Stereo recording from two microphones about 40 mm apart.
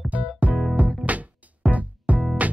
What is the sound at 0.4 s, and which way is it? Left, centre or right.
Music, right.